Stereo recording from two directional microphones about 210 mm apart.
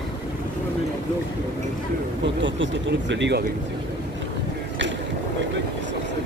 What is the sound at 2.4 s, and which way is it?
Speech, 60° right (ahead or behind).